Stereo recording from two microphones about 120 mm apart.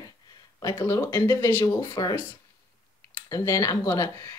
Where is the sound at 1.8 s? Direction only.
30° left (ahead or behind).